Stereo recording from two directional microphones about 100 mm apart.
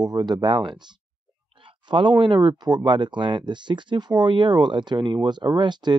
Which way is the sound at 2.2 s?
55° right (ahead or behind).